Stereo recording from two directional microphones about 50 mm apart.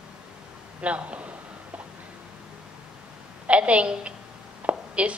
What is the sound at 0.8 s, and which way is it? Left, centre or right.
Speech, right.